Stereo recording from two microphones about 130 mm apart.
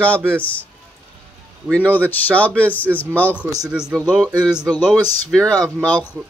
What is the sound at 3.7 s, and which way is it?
Speech, 5° right (ahead or behind).